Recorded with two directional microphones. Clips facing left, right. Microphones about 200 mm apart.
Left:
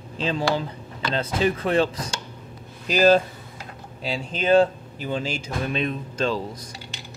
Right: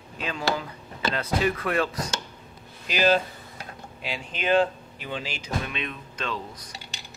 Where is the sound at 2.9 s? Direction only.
40° left (ahead or behind).